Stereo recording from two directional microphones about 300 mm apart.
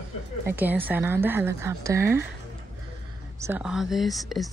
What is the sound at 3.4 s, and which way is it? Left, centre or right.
Speech, centre.